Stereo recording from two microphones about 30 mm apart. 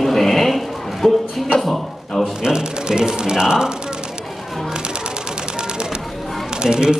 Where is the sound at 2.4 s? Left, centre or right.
Right.